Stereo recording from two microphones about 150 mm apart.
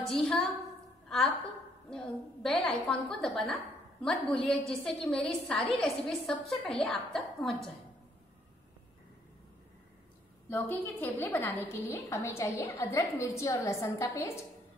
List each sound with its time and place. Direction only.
0.0 s a woman's voice: centre (ahead or behind)
1.0 s a sound: 5° left (ahead or behind)
1.9 s a woman's voice: 5° left (ahead or behind)
10.5 s a woman's voice: 10° left (ahead or behind)